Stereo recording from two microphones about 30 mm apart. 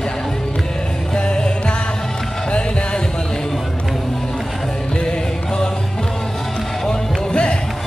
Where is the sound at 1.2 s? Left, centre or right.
Left.